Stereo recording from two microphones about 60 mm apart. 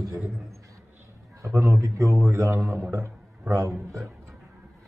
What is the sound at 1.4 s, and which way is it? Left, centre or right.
A man's voice, right.